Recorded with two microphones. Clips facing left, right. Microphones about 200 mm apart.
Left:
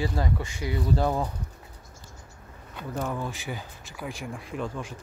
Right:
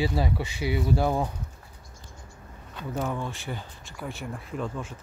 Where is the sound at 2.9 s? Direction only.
Centre (ahead or behind).